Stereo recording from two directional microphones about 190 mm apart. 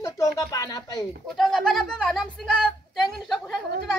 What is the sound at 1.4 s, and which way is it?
Speech, centre (ahead or behind).